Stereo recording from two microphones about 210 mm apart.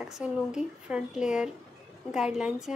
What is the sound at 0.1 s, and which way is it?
A woman's voice, 5° right (ahead or behind).